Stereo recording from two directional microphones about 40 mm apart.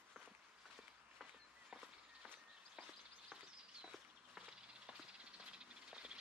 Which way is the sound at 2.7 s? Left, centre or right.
Right.